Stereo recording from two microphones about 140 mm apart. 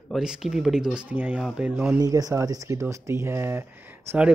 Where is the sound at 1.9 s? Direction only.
25° right (ahead or behind).